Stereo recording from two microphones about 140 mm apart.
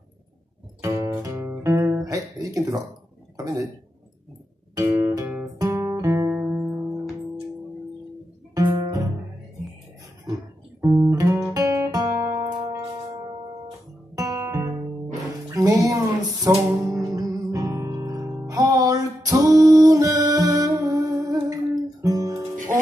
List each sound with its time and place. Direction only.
0.7 s guitar: 20° right (ahead or behind)
3.3 s speech: 25° right (ahead or behind)
4.7 s music: 25° right (ahead or behind)
5.6 s guitar: 25° right (ahead or behind)
8.5 s music: 30° right (ahead or behind)
10.2 s guitar: 25° right (ahead or behind)
14.1 s guitar: 25° right (ahead or behind)
15.5 s music: 25° right (ahead or behind)